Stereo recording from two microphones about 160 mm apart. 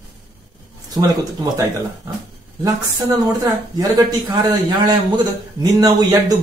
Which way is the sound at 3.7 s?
25° right (ahead or behind).